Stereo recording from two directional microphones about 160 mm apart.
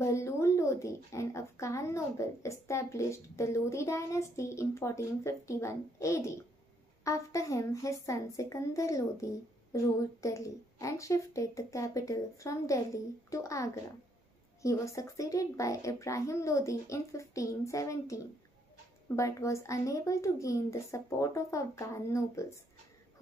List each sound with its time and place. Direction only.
0.0 s a woman's voice: 20° left (ahead or behind)